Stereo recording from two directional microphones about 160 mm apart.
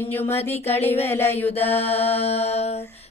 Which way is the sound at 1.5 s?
40° left (ahead or behind).